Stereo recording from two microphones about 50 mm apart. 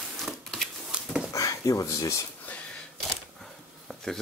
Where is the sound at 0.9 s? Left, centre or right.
Right.